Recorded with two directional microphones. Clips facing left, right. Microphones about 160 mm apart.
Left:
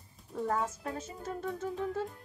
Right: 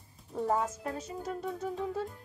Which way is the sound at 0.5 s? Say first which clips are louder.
Right 3 dB; 15° right (ahead or behind).